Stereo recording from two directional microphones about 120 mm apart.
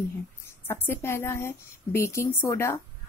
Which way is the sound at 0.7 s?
15° left (ahead or behind).